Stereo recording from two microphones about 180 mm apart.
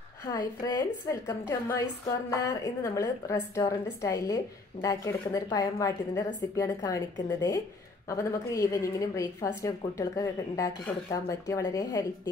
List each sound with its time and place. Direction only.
0.2 s a woman's voice: 20° left (ahead or behind)